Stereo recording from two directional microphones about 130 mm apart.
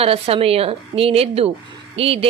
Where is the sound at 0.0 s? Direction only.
50° right (ahead or behind).